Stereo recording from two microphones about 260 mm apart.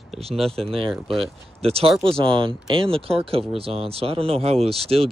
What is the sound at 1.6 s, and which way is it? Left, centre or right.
Speech, right.